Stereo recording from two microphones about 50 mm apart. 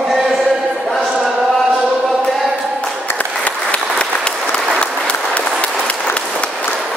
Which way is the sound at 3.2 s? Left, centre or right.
Left.